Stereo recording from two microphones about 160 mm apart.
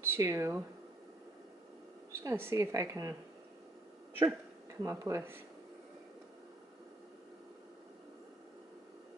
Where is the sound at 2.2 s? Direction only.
15° right (ahead or behind).